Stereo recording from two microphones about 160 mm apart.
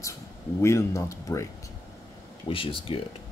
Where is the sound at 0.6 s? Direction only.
20° left (ahead or behind).